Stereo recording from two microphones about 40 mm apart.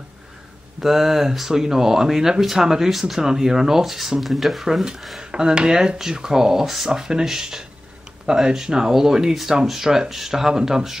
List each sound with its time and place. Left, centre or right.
0.7 s speech: centre
5.2 s speech: centre